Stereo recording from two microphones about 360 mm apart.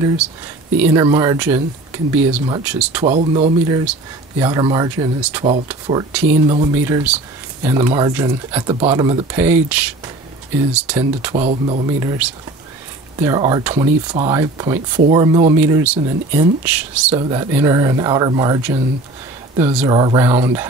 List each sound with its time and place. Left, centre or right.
0.7 s speech: centre
3.0 s speech: centre
11.0 s speech: centre